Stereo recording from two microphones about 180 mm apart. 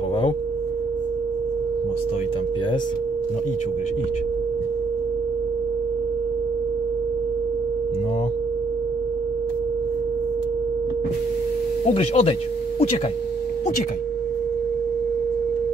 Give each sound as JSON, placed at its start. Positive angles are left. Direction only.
{"t": 11.9, "sound": "speech", "side_deg": 35}